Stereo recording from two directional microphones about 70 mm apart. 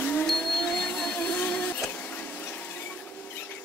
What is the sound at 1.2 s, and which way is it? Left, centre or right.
Printer, centre.